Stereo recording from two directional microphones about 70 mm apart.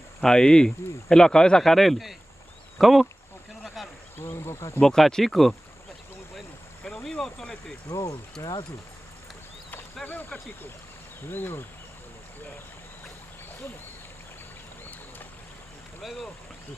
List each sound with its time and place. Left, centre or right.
0.2 s speech: centre
3.6 s insect: centre
4.2 s speech: left
4.7 s speech: centre
6.3 s vehicle: centre
7.9 s speech: left
10.0 s a sound: left
11.2 s speech: left
16.0 s speech: centre